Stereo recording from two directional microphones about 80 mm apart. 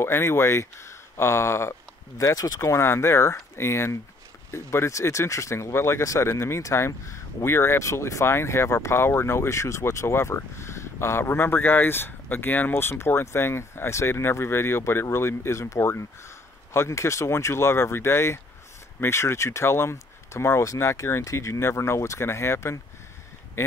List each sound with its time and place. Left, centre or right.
0.0 s speech: left